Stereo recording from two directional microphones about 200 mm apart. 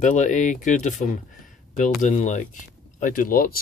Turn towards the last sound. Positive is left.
turn(degrees=45)  # may be behind; listen again after turning